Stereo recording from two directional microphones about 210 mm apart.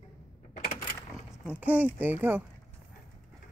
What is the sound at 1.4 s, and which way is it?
Speech, 5° right (ahead or behind).